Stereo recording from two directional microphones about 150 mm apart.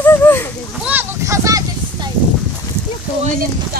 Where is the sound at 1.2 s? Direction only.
20° right (ahead or behind).